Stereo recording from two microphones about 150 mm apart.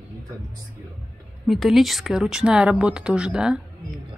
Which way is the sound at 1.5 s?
Centre (ahead or behind).